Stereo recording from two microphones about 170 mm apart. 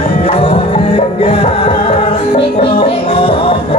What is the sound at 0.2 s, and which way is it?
Music, 35° left (ahead or behind).